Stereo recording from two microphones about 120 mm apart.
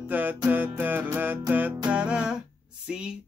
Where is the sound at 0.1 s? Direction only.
15° right (ahead or behind).